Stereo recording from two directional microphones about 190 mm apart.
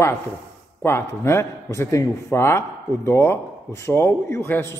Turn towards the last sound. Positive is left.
turn(degrees=10)  # may be behind; listen again after turning